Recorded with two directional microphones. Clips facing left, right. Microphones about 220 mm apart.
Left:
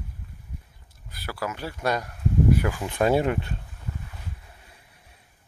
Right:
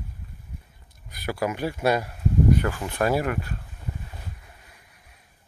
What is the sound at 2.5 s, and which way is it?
Speech, 10° left (ahead or behind).